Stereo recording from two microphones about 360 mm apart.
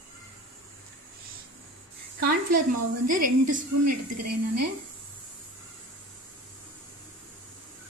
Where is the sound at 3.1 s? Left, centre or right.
Right.